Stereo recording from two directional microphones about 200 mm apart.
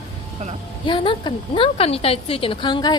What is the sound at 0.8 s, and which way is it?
A woman's voice, 25° left (ahead or behind).